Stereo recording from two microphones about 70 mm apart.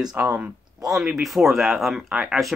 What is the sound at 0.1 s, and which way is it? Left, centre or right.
Speech, centre.